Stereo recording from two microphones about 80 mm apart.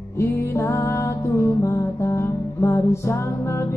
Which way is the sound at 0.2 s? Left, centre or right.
Left.